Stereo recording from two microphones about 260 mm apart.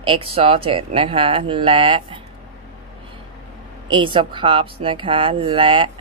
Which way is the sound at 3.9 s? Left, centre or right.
Centre.